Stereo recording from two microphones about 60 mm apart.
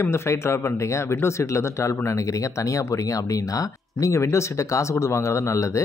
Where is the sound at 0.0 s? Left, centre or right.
Left.